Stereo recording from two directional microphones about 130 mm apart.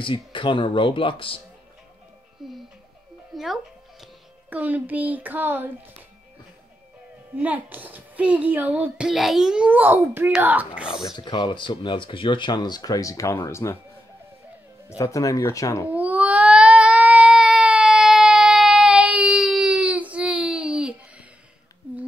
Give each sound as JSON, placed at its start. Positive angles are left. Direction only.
{"t": 0.0, "sound": "speech", "side_deg": 40}
{"t": 2.4, "sound": "music", "side_deg": -5}
{"t": 4.6, "sound": "a woman's voice", "side_deg": -15}
{"t": 7.3, "sound": "a woman's voice", "side_deg": -10}
{"t": 11.1, "sound": "speech", "side_deg": 35}
{"t": 15.0, "sound": "speech", "side_deg": 25}
{"t": 15.9, "sound": "baby cry", "side_deg": -10}